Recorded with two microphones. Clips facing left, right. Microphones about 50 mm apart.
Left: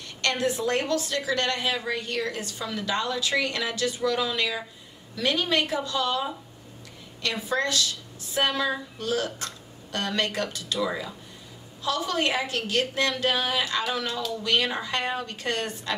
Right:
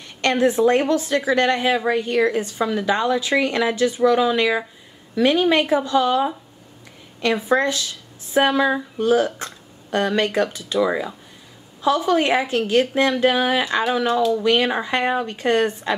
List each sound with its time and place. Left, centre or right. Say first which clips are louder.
0.2 s a woman's voice: right 9 dB; right
10.9 s speech: right 8 dB; right
11.8 s a woman's voice: right 8 dB; right
14.4 s a woman's voice: right 7 dB; right